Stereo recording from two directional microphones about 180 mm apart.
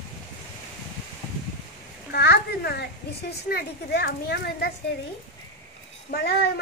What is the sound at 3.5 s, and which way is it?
Speech, 60° left (ahead or behind).